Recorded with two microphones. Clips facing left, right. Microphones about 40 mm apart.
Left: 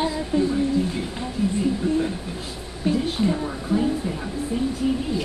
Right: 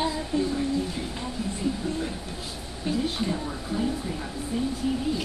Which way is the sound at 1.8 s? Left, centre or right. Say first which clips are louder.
Left 7 dB; left.